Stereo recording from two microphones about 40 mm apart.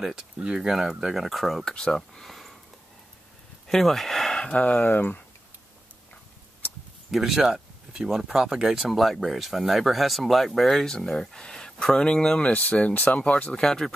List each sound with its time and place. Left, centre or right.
0.6 s speech: centre
1.6 s speech: centre
3.6 s a sound: centre
4.5 s speech: left
4.7 s speech: left
7.1 s speech: centre
8.9 s speech: centre
10.9 s speech: centre
12.4 s speech: left
13.5 s speech: centre